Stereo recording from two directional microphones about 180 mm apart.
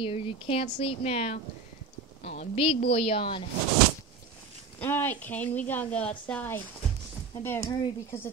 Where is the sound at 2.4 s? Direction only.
30° left (ahead or behind).